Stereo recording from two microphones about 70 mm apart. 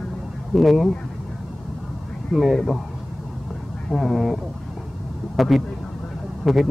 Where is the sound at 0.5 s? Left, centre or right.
Centre.